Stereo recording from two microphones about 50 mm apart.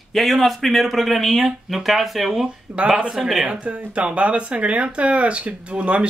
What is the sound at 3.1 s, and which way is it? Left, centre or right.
Speech, centre.